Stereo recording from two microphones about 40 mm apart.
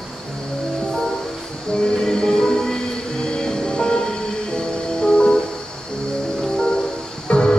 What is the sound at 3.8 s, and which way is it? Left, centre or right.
Music, left.